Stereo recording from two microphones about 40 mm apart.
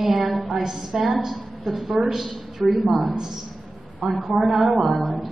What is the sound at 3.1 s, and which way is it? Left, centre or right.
Speech, centre.